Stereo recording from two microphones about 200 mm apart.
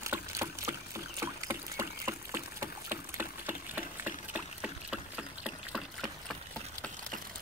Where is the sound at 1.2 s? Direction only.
15° right (ahead or behind).